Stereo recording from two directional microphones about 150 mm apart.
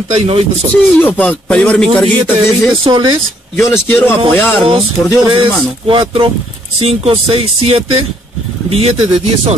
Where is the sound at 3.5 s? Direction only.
15° left (ahead or behind).